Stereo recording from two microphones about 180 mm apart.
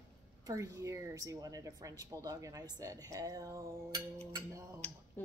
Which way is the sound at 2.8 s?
20° right (ahead or behind).